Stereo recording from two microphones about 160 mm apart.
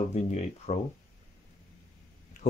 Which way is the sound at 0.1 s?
45° left (ahead or behind).